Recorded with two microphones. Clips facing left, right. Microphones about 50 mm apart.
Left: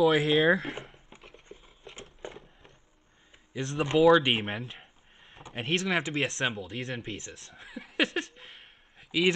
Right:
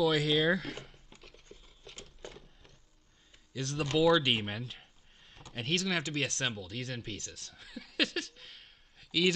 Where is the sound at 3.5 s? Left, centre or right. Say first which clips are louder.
Left 5 dB; left.